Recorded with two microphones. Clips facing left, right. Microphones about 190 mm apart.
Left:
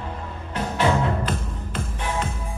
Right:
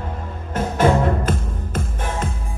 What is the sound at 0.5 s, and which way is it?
Music, 45° right (ahead or behind).